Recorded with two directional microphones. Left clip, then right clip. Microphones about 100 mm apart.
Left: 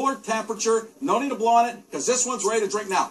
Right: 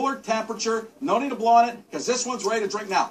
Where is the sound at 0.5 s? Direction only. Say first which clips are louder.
Left 3 dB; 40° right (ahead or behind).